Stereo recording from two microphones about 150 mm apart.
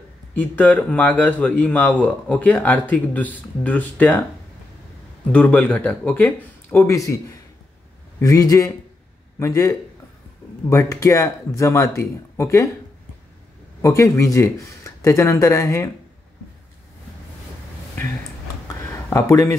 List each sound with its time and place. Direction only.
0.3 s speech: 10° left (ahead or behind)
5.3 s speech: 10° left (ahead or behind)
13.7 s speech: 20° left (ahead or behind)
18.9 s a sound: 20° left (ahead or behind)